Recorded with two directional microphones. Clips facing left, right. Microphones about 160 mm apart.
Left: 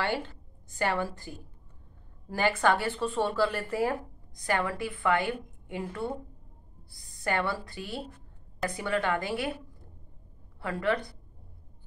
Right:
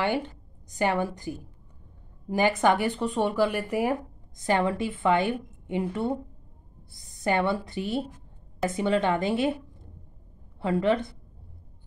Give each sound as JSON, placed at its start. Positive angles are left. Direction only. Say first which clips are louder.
{"t": 0.0, "sound": "a woman's voice", "louder": "right 4 dB", "side_deg": -20}
{"t": 10.6, "sound": "a woman's voice", "louder": "right 5 dB", "side_deg": -20}